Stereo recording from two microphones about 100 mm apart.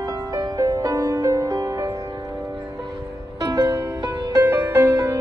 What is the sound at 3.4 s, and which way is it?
Music, 40° right (ahead or behind).